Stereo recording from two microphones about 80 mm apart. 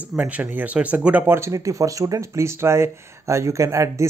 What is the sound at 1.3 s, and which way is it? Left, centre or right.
Speech, right.